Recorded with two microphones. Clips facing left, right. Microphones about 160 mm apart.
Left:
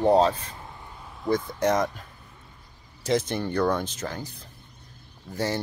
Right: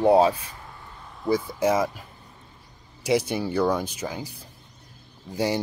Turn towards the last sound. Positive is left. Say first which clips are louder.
# right 3 dB
turn(degrees=-10)  # may be behind; listen again after turning